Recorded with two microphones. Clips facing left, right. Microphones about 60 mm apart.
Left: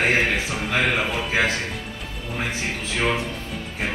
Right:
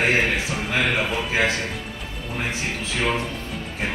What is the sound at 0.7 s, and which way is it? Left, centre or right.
Speech, left.